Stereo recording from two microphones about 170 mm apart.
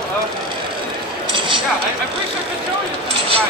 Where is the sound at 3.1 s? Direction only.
35° right (ahead or behind).